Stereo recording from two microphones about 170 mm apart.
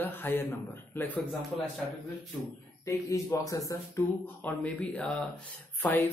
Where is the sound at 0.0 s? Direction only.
10° left (ahead or behind).